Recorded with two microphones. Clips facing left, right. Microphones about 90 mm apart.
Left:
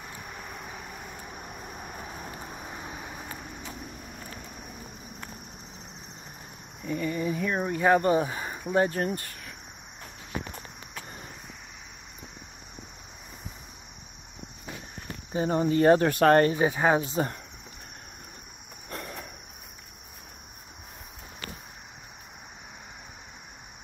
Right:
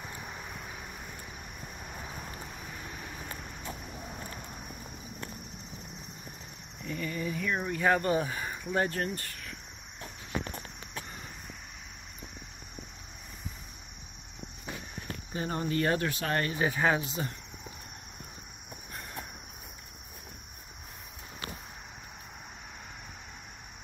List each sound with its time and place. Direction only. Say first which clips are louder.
2.5 s vehicle: left 4 dB; 25° left (ahead or behind)
6.9 s speech: left 6 dB; 20° left (ahead or behind)
15.3 s speech: left 7 dB; 20° left (ahead or behind)
16.1 s speech: left 13 dB; 50° left (ahead or behind)
16.5 s speech: left 4 dB; 20° left (ahead or behind); by 17.4 s 40° left (ahead or behind)
18.9 s cricket: left 7 dB; 90° left